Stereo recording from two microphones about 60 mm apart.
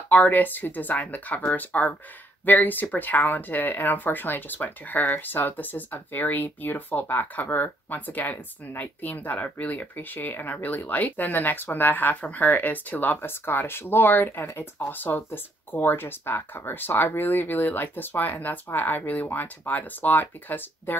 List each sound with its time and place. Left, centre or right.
0.1 s speech: left